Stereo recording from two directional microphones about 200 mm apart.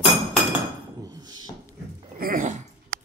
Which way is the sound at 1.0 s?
20° right (ahead or behind).